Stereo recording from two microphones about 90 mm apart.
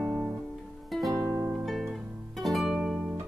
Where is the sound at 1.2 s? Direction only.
30° right (ahead or behind).